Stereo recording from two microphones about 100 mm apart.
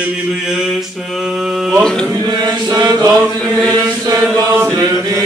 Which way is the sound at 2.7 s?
40° right (ahead or behind).